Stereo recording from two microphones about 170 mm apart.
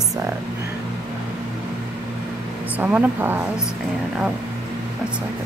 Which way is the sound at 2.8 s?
10° right (ahead or behind).